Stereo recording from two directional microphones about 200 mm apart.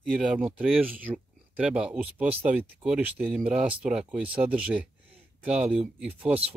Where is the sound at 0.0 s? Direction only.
Centre (ahead or behind).